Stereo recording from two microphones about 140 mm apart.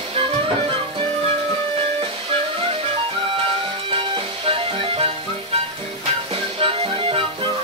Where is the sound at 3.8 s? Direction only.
35° right (ahead or behind).